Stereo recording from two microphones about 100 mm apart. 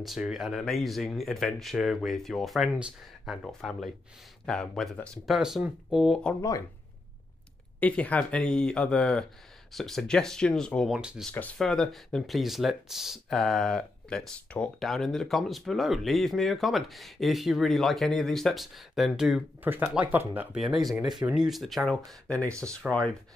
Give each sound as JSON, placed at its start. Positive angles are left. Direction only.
{"t": 0.0, "sound": "speech", "side_deg": -5}
{"t": 5.2, "sound": "speech", "side_deg": 0}
{"t": 7.8, "sound": "speech", "side_deg": 15}
{"t": 11.0, "sound": "speech", "side_deg": -10}
{"t": 11.5, "sound": "speech", "side_deg": 5}
{"t": 19.6, "sound": "speech", "side_deg": -20}
{"t": 20.5, "sound": "speech", "side_deg": -5}